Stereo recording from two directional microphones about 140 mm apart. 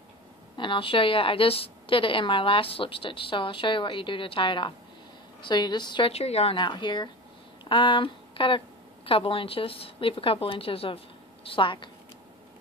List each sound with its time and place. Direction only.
0.6 s a woman's voice: 35° left (ahead or behind)